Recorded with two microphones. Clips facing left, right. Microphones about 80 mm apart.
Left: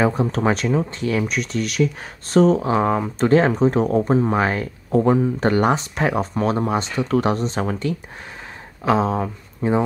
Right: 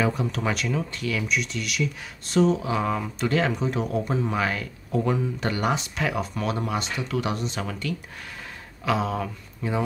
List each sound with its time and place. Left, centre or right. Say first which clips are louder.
0.0 s speech: left 6 dB; left